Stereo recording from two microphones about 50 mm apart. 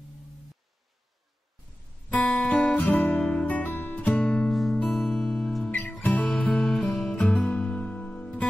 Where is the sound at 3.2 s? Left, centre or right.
Left.